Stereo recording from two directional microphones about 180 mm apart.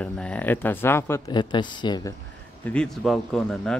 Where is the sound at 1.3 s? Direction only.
25° left (ahead or behind).